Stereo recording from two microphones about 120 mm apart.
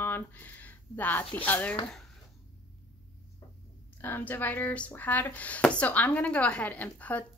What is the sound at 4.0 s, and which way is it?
A woman's voice, 15° left (ahead or behind).